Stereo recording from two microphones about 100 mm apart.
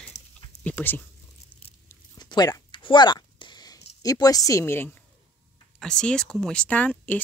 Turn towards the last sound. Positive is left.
turn(degrees=15)  # may be behind; listen again after turning